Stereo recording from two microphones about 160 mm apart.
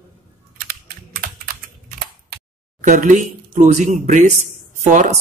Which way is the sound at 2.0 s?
60° right (ahead or behind).